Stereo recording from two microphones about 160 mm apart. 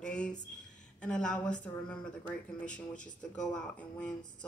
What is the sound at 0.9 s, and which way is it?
A woman's voice, 5° left (ahead or behind).